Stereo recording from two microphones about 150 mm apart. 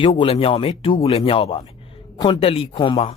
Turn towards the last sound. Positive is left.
turn(degrees=30)  # may be behind; listen again after turning